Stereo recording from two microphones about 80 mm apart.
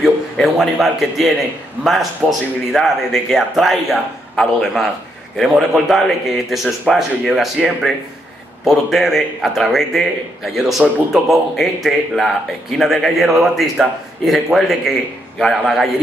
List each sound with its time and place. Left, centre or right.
0.0 s a man's voice: centre
5.4 s a man's voice: centre